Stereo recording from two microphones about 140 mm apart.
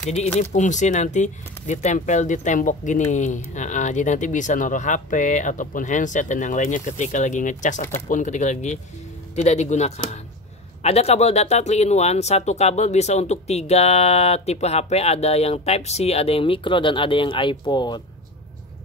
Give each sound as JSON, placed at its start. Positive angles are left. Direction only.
{"t": 0.4, "sound": "speech", "side_deg": 60}